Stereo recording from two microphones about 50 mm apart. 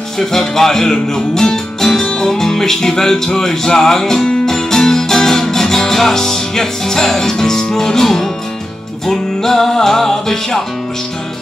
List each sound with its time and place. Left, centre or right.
0.2 s music: centre